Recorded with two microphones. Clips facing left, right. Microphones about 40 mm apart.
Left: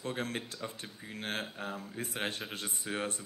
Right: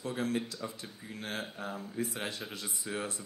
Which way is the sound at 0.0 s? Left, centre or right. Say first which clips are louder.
Right 3 dB; left.